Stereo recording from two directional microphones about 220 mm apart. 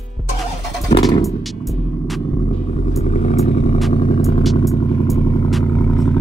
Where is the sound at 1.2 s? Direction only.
Centre (ahead or behind).